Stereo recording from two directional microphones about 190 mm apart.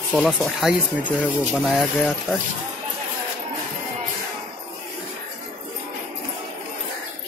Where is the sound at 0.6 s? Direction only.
5° right (ahead or behind).